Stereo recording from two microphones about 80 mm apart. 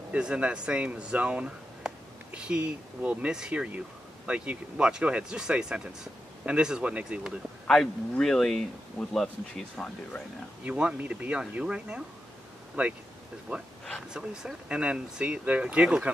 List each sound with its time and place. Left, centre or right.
0.1 s speech: centre
7.6 s speech: centre
10.6 s speech: centre
14.1 s speech: centre